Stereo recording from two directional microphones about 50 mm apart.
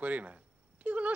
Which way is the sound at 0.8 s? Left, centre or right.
Right.